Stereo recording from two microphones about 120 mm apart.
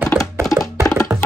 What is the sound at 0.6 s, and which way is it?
Music, 20° left (ahead or behind).